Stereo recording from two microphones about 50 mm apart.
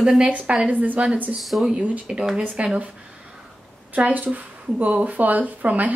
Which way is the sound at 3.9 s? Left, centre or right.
Right.